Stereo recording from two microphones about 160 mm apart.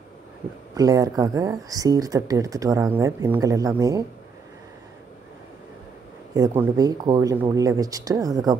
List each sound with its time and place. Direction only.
0.7 s speech: 20° right (ahead or behind)
6.3 s speech: 20° right (ahead or behind)